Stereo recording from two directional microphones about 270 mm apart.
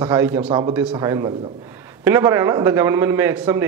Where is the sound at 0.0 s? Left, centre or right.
Centre.